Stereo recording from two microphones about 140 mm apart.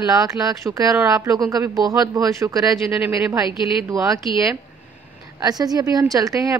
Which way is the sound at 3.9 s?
25° right (ahead or behind).